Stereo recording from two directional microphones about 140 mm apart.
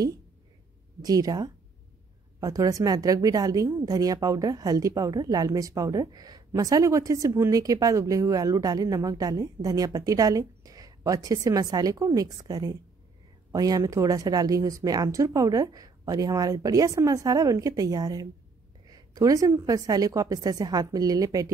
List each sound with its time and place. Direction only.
1.0 s a woman's voice: 25° right (ahead or behind)